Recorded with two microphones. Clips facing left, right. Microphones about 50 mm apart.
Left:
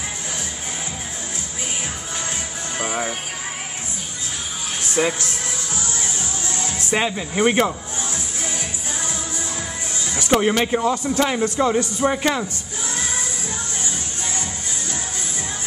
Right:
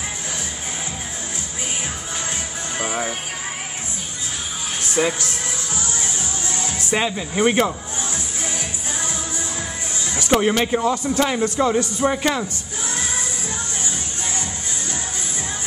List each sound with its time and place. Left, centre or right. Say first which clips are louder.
6.9 s speech: even; centre
8.0 s music: right 1 dB; right
10.1 s speech: even; centre